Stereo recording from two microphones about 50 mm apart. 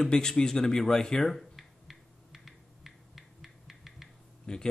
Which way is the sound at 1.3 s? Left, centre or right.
Centre.